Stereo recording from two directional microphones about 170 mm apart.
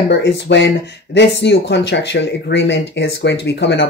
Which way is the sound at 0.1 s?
90° left.